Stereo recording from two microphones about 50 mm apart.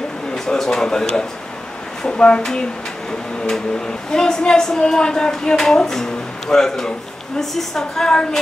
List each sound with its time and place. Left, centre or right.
0.3 s speech: centre
4.1 s a woman's voice: centre